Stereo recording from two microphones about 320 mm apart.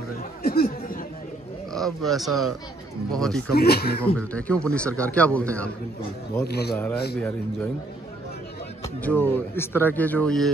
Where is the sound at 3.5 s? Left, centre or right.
Left.